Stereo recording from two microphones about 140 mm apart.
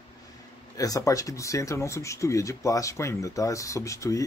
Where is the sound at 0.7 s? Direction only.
25° left (ahead or behind).